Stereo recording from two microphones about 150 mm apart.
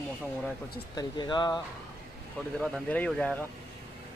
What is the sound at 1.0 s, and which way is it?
Speech, 30° left (ahead or behind).